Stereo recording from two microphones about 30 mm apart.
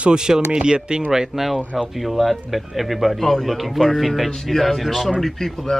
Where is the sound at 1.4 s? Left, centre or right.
Centre.